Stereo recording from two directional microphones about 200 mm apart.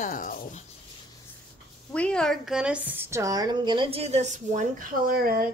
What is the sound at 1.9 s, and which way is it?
A woman's voice, 5° left (ahead or behind).